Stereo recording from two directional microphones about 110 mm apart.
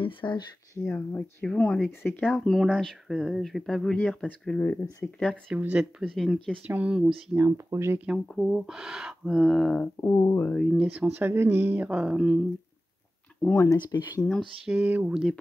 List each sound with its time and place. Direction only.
0.0 s speech: 50° left (ahead or behind)
0.7 s speech: 15° left (ahead or behind)
2.4 s speech: centre (ahead or behind)
5.6 s speech: 10° right (ahead or behind)
6.1 s speech: centre (ahead or behind)
6.6 s speech: 15° right (ahead or behind)
7.5 s speech: 25° right (ahead or behind)
8.4 s speech: 5° right (ahead or behind)
9.9 s speech: 25° left (ahead or behind)
10.5 s speech: centre (ahead or behind)
13.4 s speech: 15° left (ahead or behind)
13.7 s speech: 35° left (ahead or behind)
14.7 s speech: 15° right (ahead or behind)